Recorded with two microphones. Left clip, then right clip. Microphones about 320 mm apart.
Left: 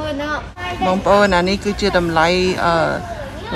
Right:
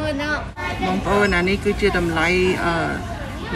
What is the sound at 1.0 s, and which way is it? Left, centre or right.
Speech, centre.